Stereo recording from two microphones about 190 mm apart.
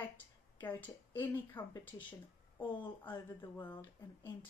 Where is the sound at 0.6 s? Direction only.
10° left (ahead or behind).